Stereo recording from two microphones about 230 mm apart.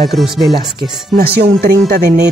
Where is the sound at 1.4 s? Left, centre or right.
Right.